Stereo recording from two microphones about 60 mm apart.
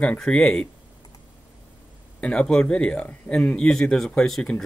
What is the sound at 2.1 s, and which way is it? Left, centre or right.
Speech, centre.